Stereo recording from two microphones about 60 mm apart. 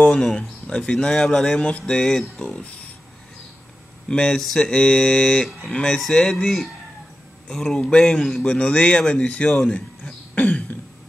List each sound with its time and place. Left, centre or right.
0.1 s speech: centre
1.6 s mantra: left
1.9 s speech: centre
4.1 s speech: centre
8.3 s speech: centre
8.5 s speech: centre
9.7 s throat clearing: left